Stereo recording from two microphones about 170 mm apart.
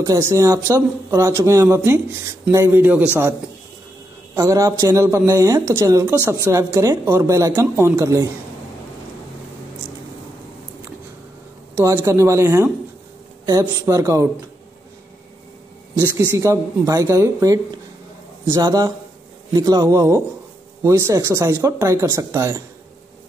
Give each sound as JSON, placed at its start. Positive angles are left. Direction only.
{"t": 0.0, "sound": "speech", "side_deg": -20}
{"t": 4.4, "sound": "speech", "side_deg": -20}
{"t": 11.7, "sound": "speech", "side_deg": -15}
{"t": 16.3, "sound": "speech", "side_deg": -20}